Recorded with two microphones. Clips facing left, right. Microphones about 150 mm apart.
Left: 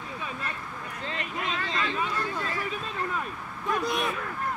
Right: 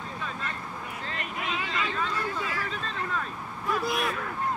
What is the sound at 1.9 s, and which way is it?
Boat, 10° left (ahead or behind).